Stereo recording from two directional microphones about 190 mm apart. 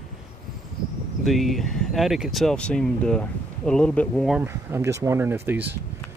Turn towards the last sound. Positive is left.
turn(degrees=-10)  # may be behind; listen again after turning